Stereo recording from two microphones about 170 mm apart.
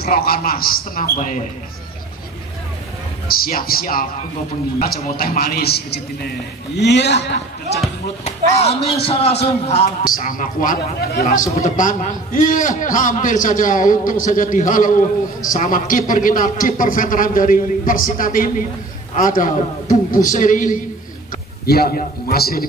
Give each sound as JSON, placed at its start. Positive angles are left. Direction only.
{"t": 0.0, "sound": "a man's voice", "side_deg": 60}
{"t": 3.3, "sound": "a man's voice", "side_deg": 60}
{"t": 5.1, "sound": "a man's voice", "side_deg": 60}
{"t": 6.8, "sound": "a woman's voice", "side_deg": 85}
{"t": 8.2, "sound": "a man's voice", "side_deg": 40}
{"t": 10.0, "sound": "a man's voice", "side_deg": 55}
{"t": 21.6, "sound": "a man's voice", "side_deg": 65}